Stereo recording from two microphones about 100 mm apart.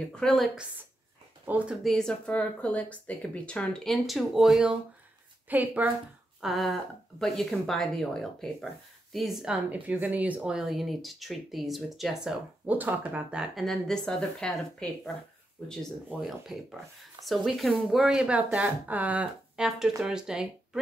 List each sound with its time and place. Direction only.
0.1 s speech: 5° left (ahead or behind)
1.4 s speech: 15° right (ahead or behind)
1.8 s speech: 5° left (ahead or behind)
5.5 s speech: 15° right (ahead or behind)
6.4 s speech: centre (ahead or behind)
12.7 s speech: 15° right (ahead or behind)